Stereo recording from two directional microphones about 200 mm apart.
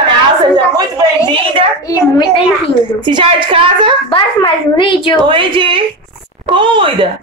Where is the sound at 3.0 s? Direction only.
25° right (ahead or behind).